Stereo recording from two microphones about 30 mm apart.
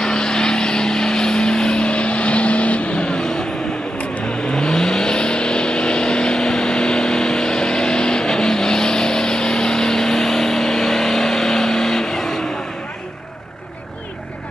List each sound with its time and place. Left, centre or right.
0.0 s vehicle: left
3.2 s vehicle: left